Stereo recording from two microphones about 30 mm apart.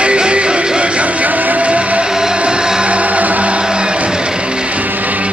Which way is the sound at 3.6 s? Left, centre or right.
Right.